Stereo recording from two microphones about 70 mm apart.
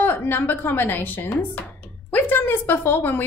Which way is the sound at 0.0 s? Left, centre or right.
Left.